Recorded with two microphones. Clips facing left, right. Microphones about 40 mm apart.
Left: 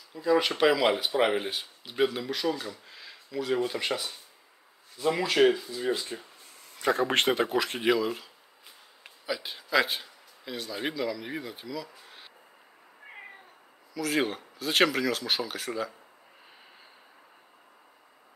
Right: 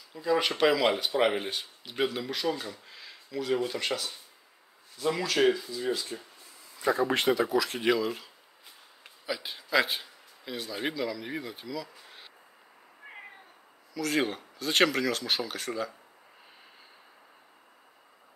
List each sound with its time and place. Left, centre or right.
0.1 s speech: centre; by 6.2 s left
6.7 s speech: left
7.8 s speech: centre
13.0 s cat: centre
13.9 s speech: centre